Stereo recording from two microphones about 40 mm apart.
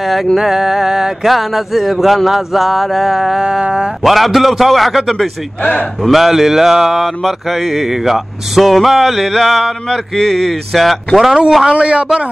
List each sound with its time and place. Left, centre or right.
0.0 s speech: centre
11.1 s speech: centre
11.7 s a man's voice: right